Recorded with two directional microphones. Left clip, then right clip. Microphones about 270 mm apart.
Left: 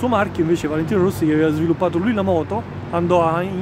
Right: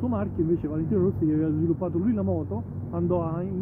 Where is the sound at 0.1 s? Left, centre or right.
Centre.